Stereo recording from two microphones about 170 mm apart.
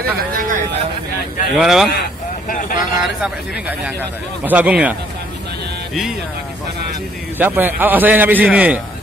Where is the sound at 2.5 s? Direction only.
55° left (ahead or behind).